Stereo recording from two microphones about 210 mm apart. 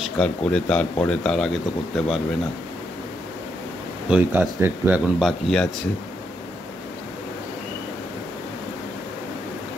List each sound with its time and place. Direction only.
0.0 s speech: 5° left (ahead or behind)
4.1 s speech: 5° right (ahead or behind)